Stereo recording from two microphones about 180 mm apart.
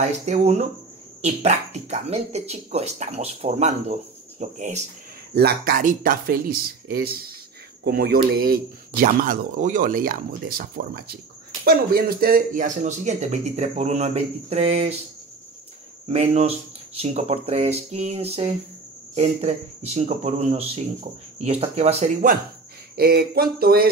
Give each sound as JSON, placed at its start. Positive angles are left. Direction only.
{"t": 0.0, "sound": "speech", "side_deg": -35}
{"t": 5.3, "sound": "speech", "side_deg": -60}
{"t": 16.1, "sound": "speech", "side_deg": -35}
{"t": 22.9, "sound": "speech", "side_deg": -60}